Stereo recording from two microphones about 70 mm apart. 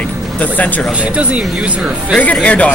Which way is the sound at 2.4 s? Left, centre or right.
Centre.